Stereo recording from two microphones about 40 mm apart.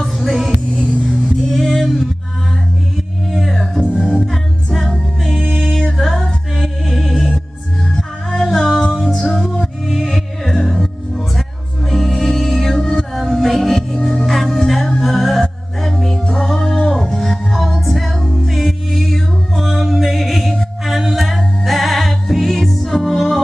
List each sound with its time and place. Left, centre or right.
0.0 s music: centre
0.7 s music: left
1.3 s music: centre
3.3 s music: centre